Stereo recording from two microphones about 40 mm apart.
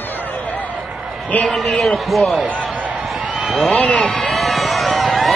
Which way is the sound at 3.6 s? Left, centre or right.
Left.